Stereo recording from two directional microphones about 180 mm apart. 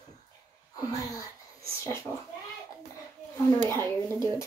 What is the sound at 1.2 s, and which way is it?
Speech, 15° left (ahead or behind).